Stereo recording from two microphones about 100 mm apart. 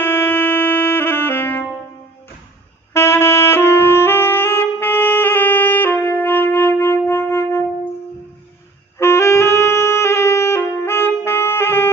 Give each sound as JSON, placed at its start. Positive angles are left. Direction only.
{"t": 0.0, "sound": "music", "side_deg": 20}
{"t": 2.9, "sound": "saxophone", "side_deg": 25}
{"t": 8.9, "sound": "music", "side_deg": 30}